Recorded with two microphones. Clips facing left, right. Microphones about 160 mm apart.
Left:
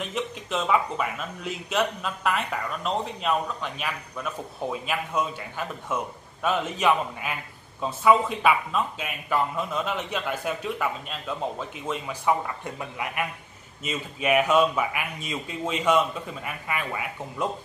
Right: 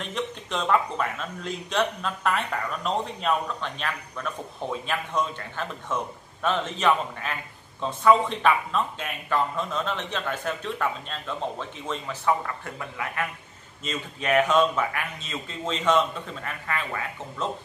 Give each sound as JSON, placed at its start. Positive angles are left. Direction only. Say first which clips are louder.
{"t": 0.0, "sound": "speech", "louder": "left 1 dB", "side_deg": 5}